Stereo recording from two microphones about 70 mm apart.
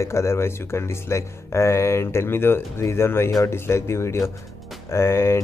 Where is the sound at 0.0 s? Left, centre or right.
Left.